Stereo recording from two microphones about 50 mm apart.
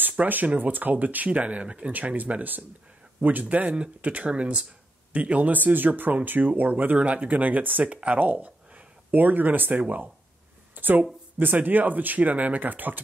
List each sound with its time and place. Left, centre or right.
0.2 s speech: right
0.6 s speech: right
1.9 s speech: right
10.7 s a sound: right
11.3 s speech: right